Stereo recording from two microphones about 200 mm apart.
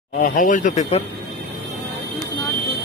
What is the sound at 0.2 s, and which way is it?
Speech, 40° left (ahead or behind).